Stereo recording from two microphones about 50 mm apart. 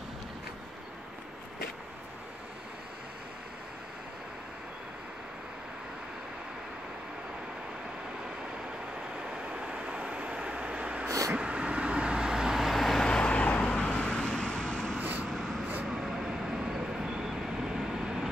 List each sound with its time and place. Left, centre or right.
9.2 s vehicle: centre
13.0 s vehicle: centre
13.7 s vehicle: centre
15.0 s vehicle: right
15.3 s vehicle: centre
15.9 s vehicle: centre